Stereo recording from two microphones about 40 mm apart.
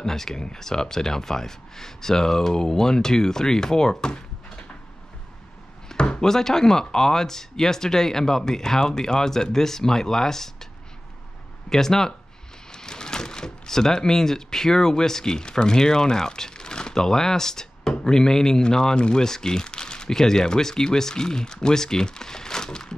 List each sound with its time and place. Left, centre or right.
0.0 s speech: centre
5.9 s speech: left
11.7 s speech: centre